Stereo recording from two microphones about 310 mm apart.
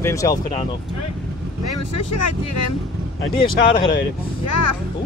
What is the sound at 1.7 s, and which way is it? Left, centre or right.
Speech, left.